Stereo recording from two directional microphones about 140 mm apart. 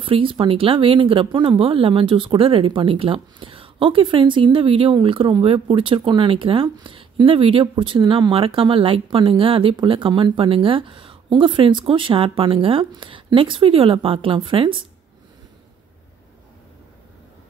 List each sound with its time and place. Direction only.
0.0 s speech: 40° right (ahead or behind)